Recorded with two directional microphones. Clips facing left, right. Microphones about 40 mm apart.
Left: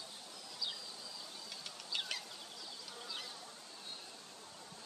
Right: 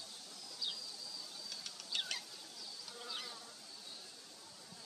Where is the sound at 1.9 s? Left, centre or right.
Centre.